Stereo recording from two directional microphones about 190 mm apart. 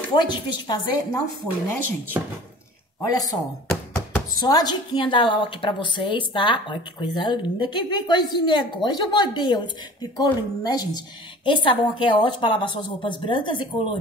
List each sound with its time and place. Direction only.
0.1 s speech: 20° left (ahead or behind)
3.1 s speech: 20° left (ahead or behind)